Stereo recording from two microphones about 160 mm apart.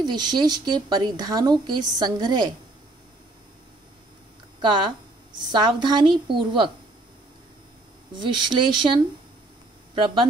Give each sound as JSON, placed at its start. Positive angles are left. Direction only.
{"t": 0.0, "sound": "speech", "side_deg": -25}
{"t": 4.6, "sound": "speech", "side_deg": -30}
{"t": 8.2, "sound": "speech", "side_deg": -30}